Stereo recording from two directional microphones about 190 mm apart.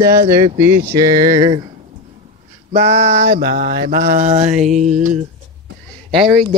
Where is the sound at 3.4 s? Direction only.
50° right (ahead or behind).